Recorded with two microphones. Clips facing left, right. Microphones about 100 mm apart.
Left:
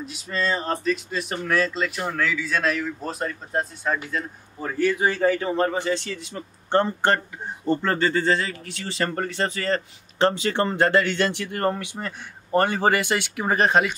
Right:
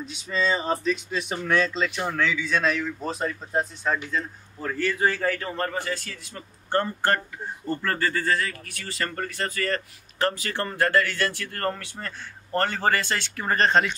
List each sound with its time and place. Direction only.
0.0 s speech: 5° left (ahead or behind)